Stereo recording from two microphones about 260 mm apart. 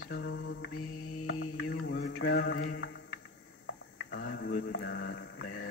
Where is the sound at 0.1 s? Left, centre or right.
Left.